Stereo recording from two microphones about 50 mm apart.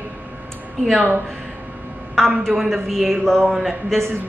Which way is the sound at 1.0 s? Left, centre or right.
Right.